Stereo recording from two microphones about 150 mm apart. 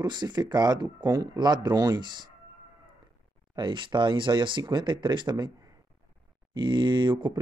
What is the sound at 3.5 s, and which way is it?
Speech, 30° right (ahead or behind).